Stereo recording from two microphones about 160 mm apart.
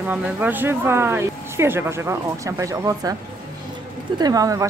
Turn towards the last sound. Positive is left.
turn(degrees=-20)  # may be behind; listen again after turning